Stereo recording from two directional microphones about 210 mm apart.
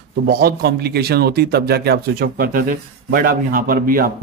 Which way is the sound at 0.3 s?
45° right (ahead or behind).